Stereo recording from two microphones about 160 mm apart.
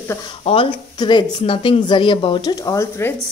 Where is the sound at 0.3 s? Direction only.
35° left (ahead or behind).